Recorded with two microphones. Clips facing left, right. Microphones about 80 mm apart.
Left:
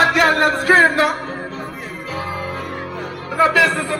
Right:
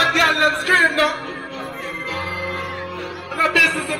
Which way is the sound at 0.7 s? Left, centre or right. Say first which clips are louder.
Left 6 dB; left.